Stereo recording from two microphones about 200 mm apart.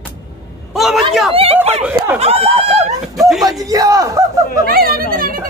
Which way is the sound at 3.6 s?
20° right (ahead or behind).